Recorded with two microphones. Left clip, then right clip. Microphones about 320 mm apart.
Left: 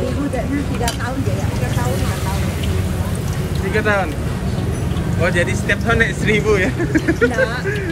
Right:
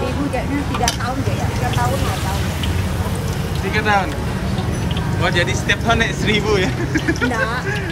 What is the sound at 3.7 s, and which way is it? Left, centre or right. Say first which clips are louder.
Speech: even; centre.